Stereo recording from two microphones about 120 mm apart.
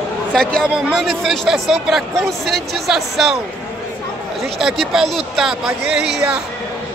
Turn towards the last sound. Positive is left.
turn(degrees=-5)  # may be behind; listen again after turning